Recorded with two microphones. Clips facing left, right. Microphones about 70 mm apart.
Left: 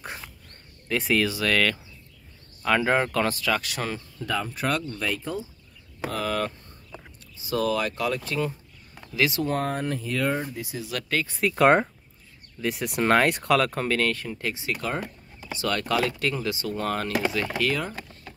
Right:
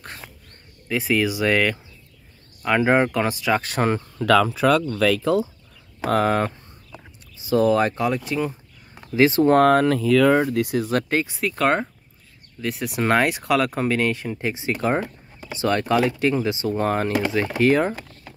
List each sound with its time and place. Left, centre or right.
0.8 s speech: centre
1.3 s speech: centre
3.5 s speech: right
4.2 s speech: right
6.0 s speech: right
9.7 s speech: right
10.9 s speech: right
11.3 s speech: centre
11.6 s speech: centre
12.6 s speech: centre; by 17.9 s right